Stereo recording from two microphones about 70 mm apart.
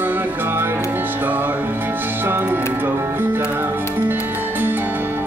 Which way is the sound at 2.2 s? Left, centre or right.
Right.